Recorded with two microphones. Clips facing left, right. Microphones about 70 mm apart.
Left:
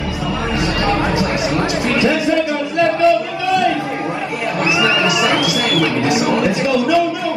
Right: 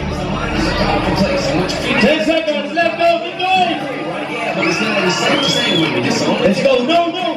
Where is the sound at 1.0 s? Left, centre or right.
Left.